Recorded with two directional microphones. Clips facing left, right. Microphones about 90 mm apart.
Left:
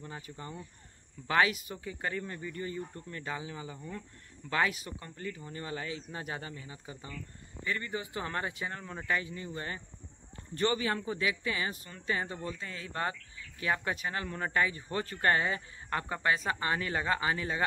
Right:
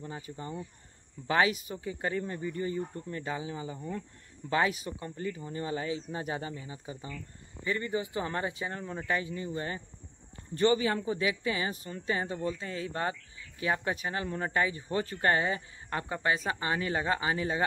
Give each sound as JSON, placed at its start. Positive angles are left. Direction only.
{"t": 0.0, "sound": "speech", "side_deg": -20}